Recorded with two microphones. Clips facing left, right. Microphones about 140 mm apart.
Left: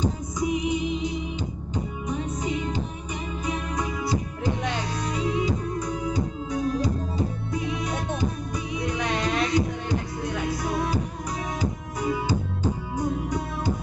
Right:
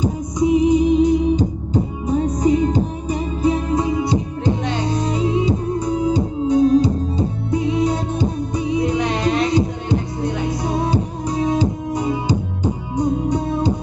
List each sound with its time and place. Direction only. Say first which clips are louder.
0.4 s music: right 11 dB; 30° right (ahead or behind)